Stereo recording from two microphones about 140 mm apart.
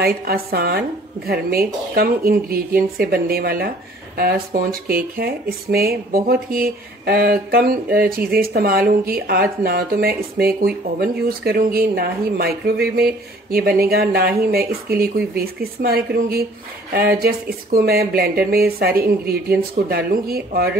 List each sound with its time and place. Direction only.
0.0 s speech: 90° right